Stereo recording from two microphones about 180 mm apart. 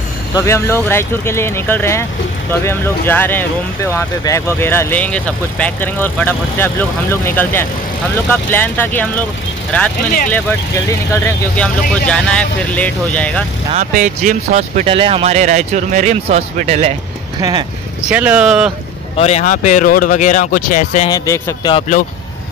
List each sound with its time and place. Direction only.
0.3 s speech: 15° left (ahead or behind)
10.9 s speech: 10° left (ahead or behind)
13.7 s speech: 45° right (ahead or behind)
17.4 s speech: 20° right (ahead or behind)
18.1 s speech: 10° right (ahead or behind)
19.1 s speech: 35° left (ahead or behind)
21.1 s speech: 20° left (ahead or behind)